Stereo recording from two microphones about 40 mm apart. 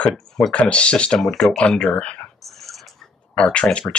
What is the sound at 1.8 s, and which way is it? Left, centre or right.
Speech, left.